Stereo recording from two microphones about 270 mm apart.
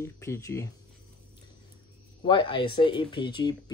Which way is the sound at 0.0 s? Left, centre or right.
Centre.